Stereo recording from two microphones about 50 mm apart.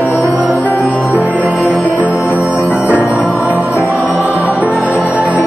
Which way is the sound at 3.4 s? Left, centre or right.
Right.